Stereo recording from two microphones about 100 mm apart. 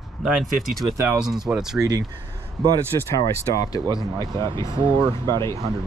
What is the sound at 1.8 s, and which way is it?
Speech, 40° right (ahead or behind).